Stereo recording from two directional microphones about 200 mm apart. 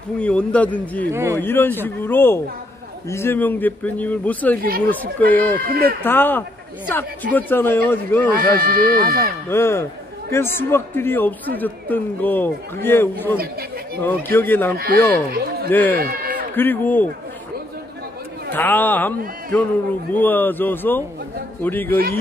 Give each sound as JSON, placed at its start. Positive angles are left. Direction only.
{"t": 0.2, "sound": "a man's voice", "side_deg": 5}
{"t": 4.6, "sound": "speech", "side_deg": -50}
{"t": 5.2, "sound": "a man's voice", "side_deg": 10}
{"t": 5.6, "sound": "speech", "side_deg": -50}
{"t": 6.0, "sound": "a man's voice", "side_deg": 10}
{"t": 8.4, "sound": "speech", "side_deg": -45}
{"t": 9.5, "sound": "a man's voice", "side_deg": 15}
{"t": 15.3, "sound": "speech", "side_deg": -50}
{"t": 15.7, "sound": "a man's voice", "side_deg": 10}
{"t": 16.0, "sound": "a man's voice", "side_deg": -50}
{"t": 16.5, "sound": "a man's voice", "side_deg": 10}
{"t": 18.5, "sound": "a man's voice", "side_deg": 10}